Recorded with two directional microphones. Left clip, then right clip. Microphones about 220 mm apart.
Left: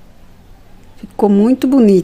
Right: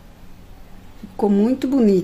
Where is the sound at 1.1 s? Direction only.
25° left (ahead or behind).